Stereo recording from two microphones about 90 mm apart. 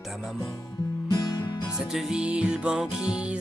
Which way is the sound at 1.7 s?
5° right (ahead or behind).